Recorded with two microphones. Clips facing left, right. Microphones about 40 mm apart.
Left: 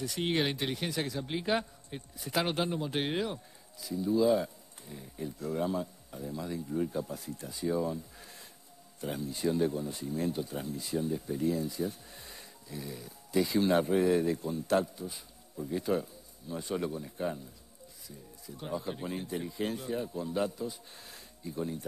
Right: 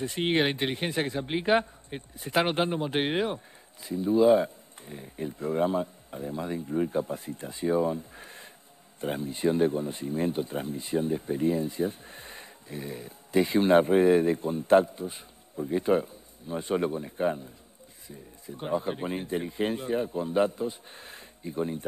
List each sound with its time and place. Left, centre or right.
0.0 s speech: right